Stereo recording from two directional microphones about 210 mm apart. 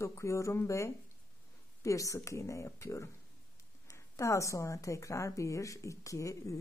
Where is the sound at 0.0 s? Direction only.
15° left (ahead or behind).